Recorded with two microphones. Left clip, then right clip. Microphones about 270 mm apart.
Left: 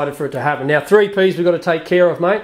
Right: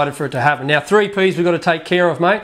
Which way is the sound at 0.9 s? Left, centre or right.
Centre.